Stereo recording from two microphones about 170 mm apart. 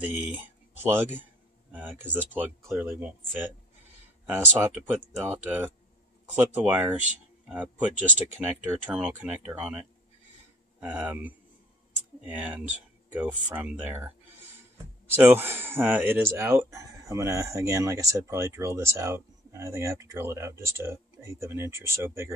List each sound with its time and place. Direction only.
0.3 s speech: 10° right (ahead or behind)
1.7 s a sound: 10° right (ahead or behind)
2.1 s speech: 10° right (ahead or behind)
15.1 s speech: 15° right (ahead or behind)